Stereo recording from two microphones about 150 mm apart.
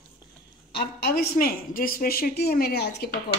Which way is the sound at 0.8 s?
90° left.